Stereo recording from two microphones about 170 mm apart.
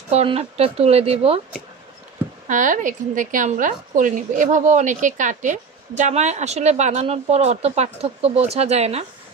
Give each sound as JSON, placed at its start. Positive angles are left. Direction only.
{"t": 0.1, "sound": "speech", "side_deg": -35}
{"t": 2.4, "sound": "a woman's voice", "side_deg": -50}